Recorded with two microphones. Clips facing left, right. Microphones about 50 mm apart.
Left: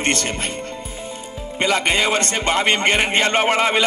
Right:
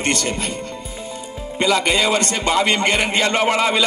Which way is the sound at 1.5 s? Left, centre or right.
Left.